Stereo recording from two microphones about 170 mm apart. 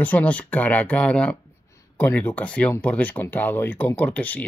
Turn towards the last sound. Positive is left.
turn(degrees=10)  # may be behind; listen again after turning